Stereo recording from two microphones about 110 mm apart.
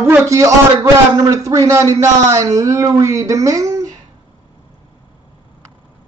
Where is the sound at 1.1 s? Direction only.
30° right (ahead or behind).